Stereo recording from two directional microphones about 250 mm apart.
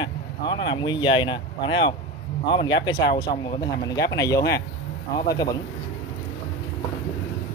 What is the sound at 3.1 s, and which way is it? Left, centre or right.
Speech, centre.